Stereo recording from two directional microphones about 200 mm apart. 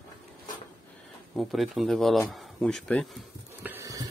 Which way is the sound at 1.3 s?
Centre (ahead or behind).